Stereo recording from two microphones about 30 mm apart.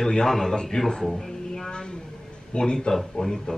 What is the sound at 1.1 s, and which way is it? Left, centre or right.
Music, centre.